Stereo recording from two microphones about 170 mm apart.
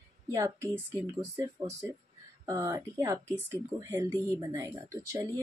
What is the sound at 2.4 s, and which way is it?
Speech, 20° right (ahead or behind).